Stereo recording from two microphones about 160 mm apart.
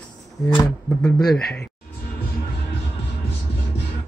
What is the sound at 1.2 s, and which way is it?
Speech, 5° left (ahead or behind).